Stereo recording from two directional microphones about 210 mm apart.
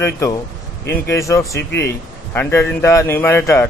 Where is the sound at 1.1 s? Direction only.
15° left (ahead or behind).